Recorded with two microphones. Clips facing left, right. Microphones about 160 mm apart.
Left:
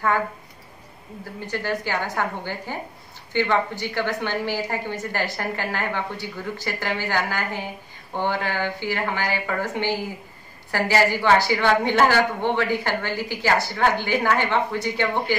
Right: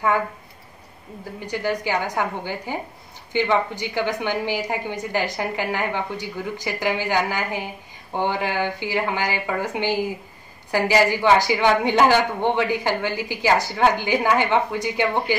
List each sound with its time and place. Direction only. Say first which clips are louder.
1.5 s a woman's voice: right 3 dB; 15° right (ahead or behind)